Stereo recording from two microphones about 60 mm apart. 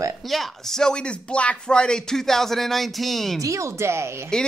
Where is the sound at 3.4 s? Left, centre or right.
Right.